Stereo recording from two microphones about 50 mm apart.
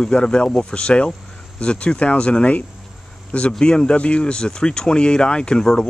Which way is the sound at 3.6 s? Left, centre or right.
Centre.